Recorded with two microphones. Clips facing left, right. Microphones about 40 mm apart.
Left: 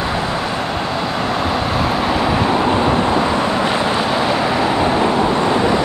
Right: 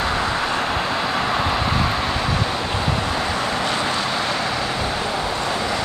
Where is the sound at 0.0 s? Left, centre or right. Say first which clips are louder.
Left 2 dB; centre.